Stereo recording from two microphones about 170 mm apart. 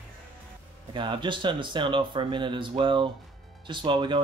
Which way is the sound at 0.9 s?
30° right (ahead or behind).